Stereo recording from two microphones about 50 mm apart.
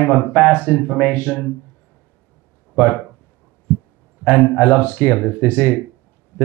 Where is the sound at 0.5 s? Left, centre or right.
Left.